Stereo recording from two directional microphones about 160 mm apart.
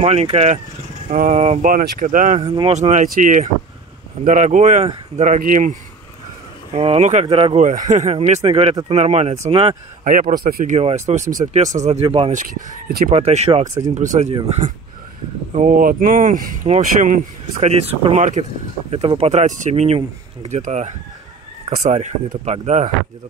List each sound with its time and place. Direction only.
0.0 s speech: 40° right (ahead or behind)
2.4 s speech: 25° right (ahead or behind)
2.7 s speech: 45° right (ahead or behind)
6.7 s speech: 40° right (ahead or behind)
7.6 s speech: 50° right (ahead or behind)
10.3 s speech: 65° right (ahead or behind)
10.8 s speech: 40° right (ahead or behind)
12.4 s speech: 55° right (ahead or behind)
13.1 s speech: 45° right (ahead or behind); by 16.5 s 60° right (ahead or behind)
16.6 s speech: 45° right (ahead or behind)